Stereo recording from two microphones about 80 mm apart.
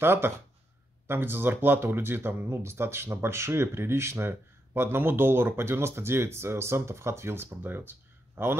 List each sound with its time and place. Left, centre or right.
0.0 s speech: right